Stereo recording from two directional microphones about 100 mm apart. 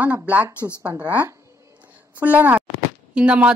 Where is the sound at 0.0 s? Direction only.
15° right (ahead or behind).